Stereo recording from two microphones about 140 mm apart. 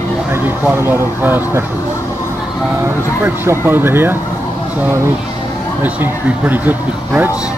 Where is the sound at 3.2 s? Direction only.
15° right (ahead or behind).